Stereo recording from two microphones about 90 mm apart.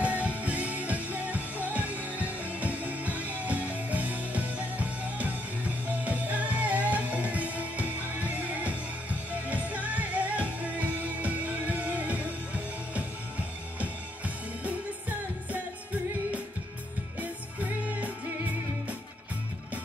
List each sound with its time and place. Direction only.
0.0 s music: 15° right (ahead or behind)
13.7 s music: 15° right (ahead or behind)
17.2 s music: 15° right (ahead or behind)